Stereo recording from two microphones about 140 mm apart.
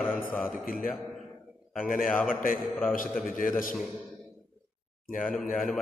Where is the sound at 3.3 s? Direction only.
75° left (ahead or behind).